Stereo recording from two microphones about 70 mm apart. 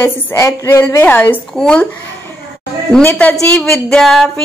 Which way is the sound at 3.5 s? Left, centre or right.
Left.